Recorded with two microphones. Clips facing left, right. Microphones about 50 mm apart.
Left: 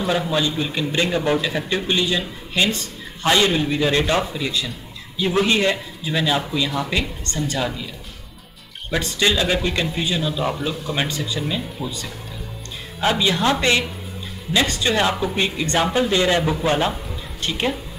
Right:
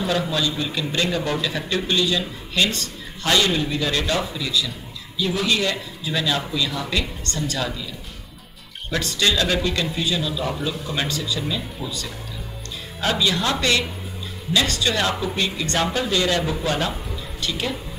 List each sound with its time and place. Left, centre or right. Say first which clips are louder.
0.3 s a man's voice: left 2 dB; left
8.9 s a man's voice: left 2 dB; left
11.1 s a man's voice: left 1 dB; left